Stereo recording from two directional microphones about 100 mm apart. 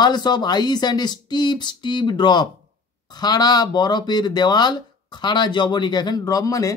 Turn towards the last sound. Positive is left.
turn(degrees=35)  # may be behind; listen again after turning